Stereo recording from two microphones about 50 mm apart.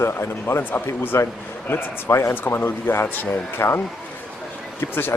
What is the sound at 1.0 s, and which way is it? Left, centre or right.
Speech, left.